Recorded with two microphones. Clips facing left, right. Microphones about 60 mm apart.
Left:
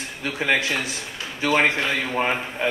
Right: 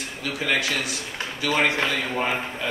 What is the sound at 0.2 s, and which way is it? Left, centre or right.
A man's voice, left.